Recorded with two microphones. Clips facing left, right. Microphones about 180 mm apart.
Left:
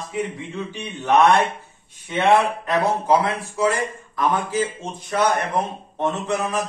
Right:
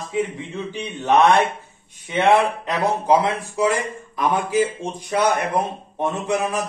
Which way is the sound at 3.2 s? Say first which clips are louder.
Right 1 dB; 15° right (ahead or behind).